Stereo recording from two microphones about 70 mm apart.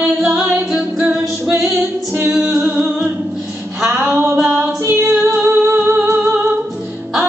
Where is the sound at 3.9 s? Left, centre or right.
Right.